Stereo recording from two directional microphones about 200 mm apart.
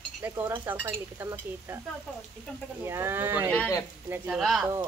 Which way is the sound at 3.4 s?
10° left (ahead or behind).